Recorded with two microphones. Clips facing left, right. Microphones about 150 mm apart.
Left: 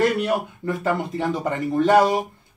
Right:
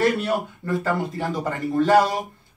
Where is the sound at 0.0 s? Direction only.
20° left (ahead or behind).